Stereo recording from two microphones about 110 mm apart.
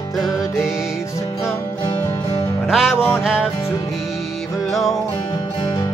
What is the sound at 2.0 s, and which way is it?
Music, 25° left (ahead or behind).